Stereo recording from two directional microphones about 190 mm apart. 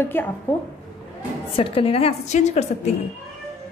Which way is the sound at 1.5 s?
30° left (ahead or behind).